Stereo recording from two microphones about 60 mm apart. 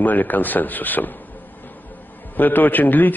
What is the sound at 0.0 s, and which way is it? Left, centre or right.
Speech, left.